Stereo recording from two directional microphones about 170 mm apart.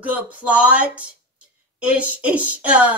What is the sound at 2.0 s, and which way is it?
Speech, 10° right (ahead or behind).